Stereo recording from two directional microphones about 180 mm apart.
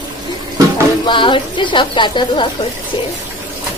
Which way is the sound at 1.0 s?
25° left (ahead or behind).